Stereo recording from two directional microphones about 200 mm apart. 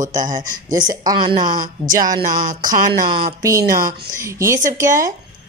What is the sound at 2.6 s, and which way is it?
Speech, 20° right (ahead or behind).